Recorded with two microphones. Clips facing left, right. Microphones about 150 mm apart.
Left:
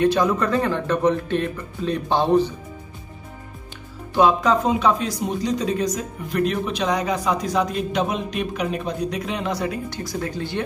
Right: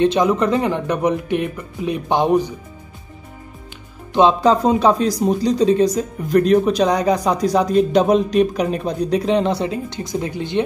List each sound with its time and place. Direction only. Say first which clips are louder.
0.0 s speech: right 3 dB; 20° right (ahead or behind)
4.1 s speech: right 4 dB; 25° right (ahead or behind)